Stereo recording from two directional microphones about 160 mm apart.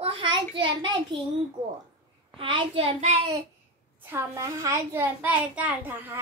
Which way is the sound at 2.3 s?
35° right (ahead or behind).